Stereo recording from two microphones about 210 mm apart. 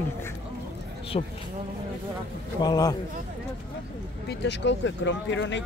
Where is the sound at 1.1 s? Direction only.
25° left (ahead or behind).